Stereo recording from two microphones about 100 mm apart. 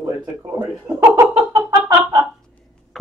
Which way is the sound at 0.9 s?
35° right (ahead or behind).